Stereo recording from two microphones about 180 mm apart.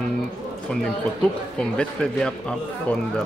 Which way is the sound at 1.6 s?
5° left (ahead or behind).